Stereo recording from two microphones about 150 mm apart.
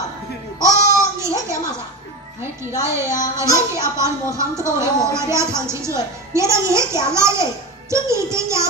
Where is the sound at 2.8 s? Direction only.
20° right (ahead or behind).